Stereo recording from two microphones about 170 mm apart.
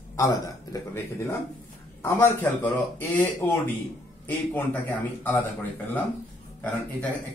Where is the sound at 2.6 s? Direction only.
10° left (ahead or behind).